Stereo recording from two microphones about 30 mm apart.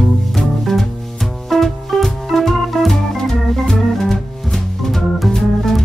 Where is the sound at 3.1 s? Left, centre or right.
Centre.